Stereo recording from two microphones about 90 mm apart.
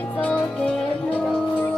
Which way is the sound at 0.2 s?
15° left (ahead or behind).